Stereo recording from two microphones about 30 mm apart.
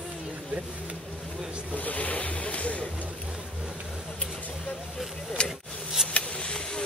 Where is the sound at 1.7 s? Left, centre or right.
Left.